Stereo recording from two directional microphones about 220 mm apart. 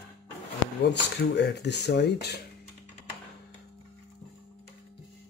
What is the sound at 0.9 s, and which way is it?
Speech, 50° left (ahead or behind).